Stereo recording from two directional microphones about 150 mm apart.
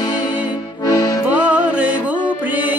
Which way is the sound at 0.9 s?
25° left (ahead or behind).